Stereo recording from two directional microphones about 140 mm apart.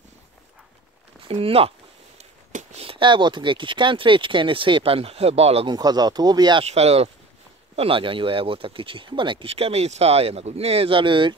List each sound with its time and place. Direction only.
1.3 s speech: 40° right (ahead or behind)
5.7 s speech: 30° right (ahead or behind)
6.6 s speech: 50° right (ahead or behind)